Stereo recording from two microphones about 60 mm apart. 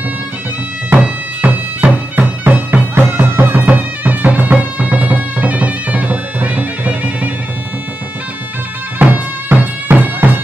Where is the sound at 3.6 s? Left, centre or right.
Right.